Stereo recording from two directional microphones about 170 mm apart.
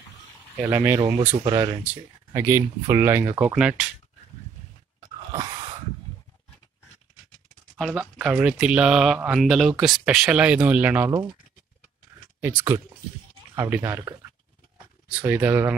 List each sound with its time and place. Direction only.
0.6 s speech: 15° right (ahead or behind)
5.3 s a sound: 20° right (ahead or behind)
7.7 s speech: 5° right (ahead or behind)
12.4 s speech: 15° right (ahead or behind)